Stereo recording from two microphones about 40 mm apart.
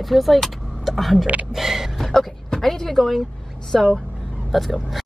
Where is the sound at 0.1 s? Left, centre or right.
Centre.